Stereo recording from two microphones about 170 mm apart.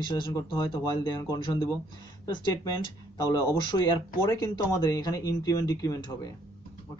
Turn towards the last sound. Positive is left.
turn(degrees=20)  # may be behind; listen again after turning